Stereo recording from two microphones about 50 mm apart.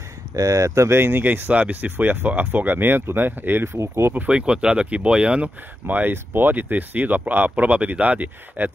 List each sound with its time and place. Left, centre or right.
0.5 s speech: right
1.5 s speech: right
4.3 s speech: centre
5.9 s speech: right